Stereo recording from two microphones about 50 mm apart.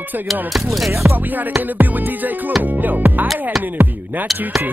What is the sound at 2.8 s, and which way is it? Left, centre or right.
Music, right.